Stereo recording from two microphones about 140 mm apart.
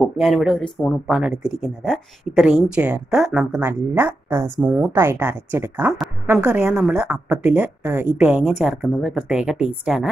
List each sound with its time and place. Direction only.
0.0 s a woman's voice: centre (ahead or behind)